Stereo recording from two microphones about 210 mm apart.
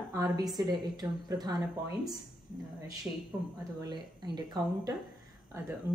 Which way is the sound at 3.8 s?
20° right (ahead or behind).